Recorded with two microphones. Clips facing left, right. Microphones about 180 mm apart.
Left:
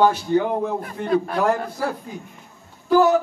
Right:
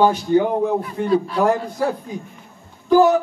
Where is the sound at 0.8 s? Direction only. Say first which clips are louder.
Right 4 dB; 50° left (ahead or behind).